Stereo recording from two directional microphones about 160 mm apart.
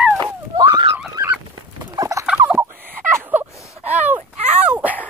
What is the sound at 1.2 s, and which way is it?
Fowl, 25° right (ahead or behind).